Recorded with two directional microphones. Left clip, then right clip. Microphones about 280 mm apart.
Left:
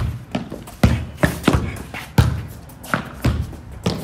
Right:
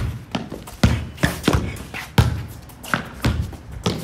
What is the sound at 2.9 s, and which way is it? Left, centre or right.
Thump, centre.